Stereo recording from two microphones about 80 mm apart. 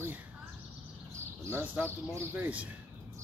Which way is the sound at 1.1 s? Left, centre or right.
Right.